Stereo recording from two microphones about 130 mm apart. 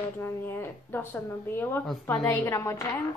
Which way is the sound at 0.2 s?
15° left (ahead or behind).